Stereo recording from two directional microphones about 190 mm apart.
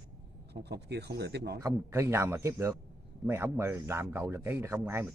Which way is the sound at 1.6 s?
15° right (ahead or behind).